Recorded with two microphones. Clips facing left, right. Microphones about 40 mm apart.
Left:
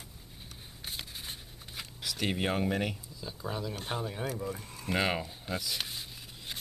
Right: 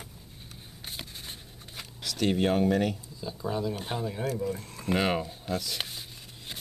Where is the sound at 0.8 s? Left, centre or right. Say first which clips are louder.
Even; centre.